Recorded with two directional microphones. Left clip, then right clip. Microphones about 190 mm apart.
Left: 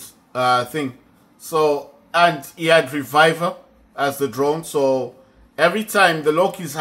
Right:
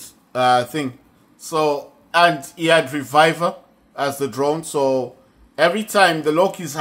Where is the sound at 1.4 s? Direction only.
20° right (ahead or behind).